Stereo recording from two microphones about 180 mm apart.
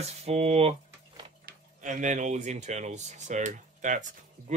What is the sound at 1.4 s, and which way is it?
Speech, 45° right (ahead or behind).